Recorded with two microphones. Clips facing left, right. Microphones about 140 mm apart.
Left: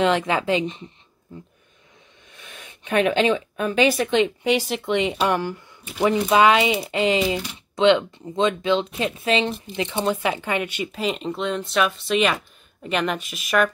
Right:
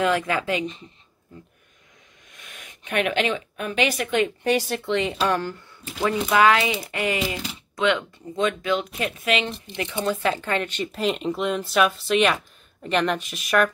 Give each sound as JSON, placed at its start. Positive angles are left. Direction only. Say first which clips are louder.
{"t": 0.0, "sound": "speech", "louder": "left 2 dB", "side_deg": 25}
{"t": 2.3, "sound": "speech", "louder": "left 2 dB", "side_deg": 30}
{"t": 4.4, "sound": "speech", "louder": "left 1 dB", "side_deg": 10}
{"t": 10.9, "sound": "speech", "louder": "right 1 dB", "side_deg": 0}